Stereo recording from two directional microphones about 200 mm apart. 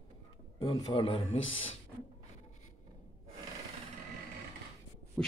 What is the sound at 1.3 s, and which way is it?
Speech, 75° left (ahead or behind).